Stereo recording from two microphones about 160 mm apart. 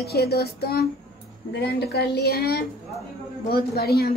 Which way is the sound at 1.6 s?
90° left.